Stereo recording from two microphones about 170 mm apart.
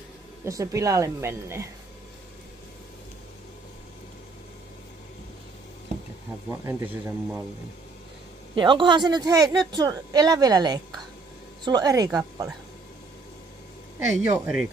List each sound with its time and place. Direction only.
0.5 s speech: 20° right (ahead or behind)
6.5 s a man's voice: 15° right (ahead or behind)
8.5 s speech: 25° right (ahead or behind)
13.9 s a man's voice: 15° right (ahead or behind)